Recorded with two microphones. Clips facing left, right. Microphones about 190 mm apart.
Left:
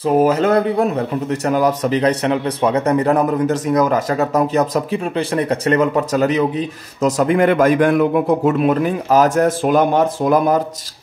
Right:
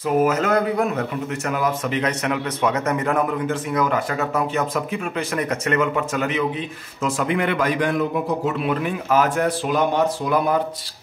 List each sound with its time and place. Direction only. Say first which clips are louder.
0.0 s a man's voice: left 5 dB; 30° left (ahead or behind)